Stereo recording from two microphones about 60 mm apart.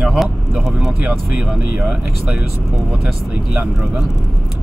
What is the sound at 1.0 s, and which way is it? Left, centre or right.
Speech, right.